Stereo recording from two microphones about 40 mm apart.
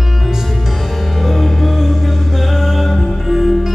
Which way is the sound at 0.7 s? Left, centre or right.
Centre.